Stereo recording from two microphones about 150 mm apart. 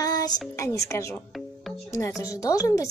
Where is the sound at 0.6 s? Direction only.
20° left (ahead or behind).